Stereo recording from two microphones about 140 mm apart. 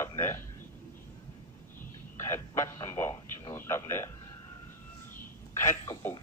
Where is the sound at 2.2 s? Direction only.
20° left (ahead or behind).